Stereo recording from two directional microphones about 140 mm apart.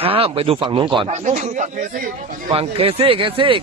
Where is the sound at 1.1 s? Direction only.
60° right (ahead or behind).